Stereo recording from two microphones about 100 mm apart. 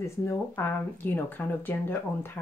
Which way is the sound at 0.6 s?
20° left (ahead or behind).